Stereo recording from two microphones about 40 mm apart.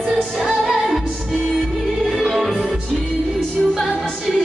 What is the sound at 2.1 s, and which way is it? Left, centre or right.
Music, centre.